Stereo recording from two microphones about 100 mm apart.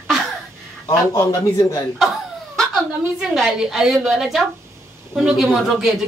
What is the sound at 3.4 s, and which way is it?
Speech, 5° right (ahead or behind).